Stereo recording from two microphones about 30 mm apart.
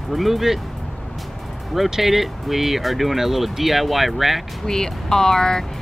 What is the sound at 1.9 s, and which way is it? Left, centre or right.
Speech, centre.